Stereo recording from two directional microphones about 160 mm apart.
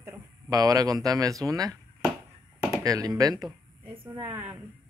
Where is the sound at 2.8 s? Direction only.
20° right (ahead or behind).